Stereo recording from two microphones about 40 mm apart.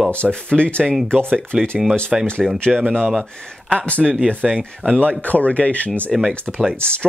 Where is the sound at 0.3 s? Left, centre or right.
Left.